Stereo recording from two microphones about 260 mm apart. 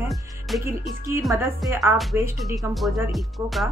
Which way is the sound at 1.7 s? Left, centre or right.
Centre.